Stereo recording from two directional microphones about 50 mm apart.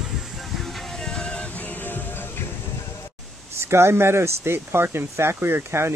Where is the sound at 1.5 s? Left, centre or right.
Left.